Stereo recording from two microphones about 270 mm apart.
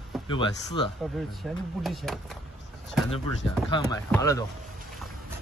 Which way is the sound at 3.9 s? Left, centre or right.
Centre.